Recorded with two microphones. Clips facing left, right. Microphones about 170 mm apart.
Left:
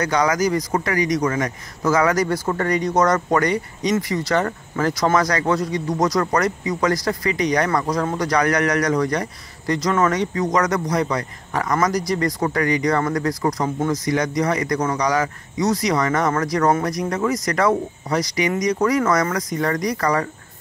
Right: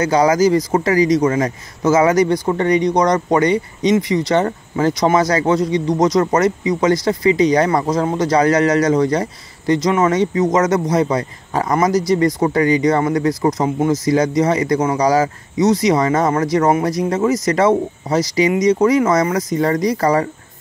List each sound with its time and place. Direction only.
0.0 s speech: 30° right (ahead or behind)